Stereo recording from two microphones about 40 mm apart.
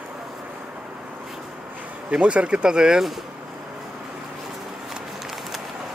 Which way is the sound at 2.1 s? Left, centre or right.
Right.